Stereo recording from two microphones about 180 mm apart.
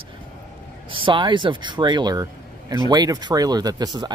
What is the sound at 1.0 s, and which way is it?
Speech, 25° right (ahead or behind).